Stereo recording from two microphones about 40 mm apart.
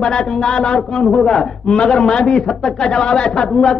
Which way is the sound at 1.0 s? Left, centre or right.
Centre.